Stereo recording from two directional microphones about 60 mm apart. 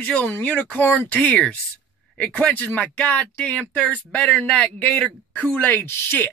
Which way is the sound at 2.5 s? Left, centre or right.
Left.